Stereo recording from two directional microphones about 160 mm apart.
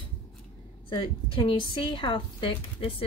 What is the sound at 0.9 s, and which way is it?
Speech, 30° left (ahead or behind).